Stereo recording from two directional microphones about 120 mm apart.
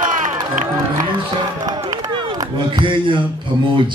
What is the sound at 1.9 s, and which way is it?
Run, 35° right (ahead or behind).